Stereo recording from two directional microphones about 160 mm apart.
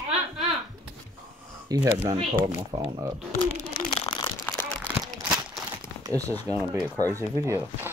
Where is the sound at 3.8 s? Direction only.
30° left (ahead or behind).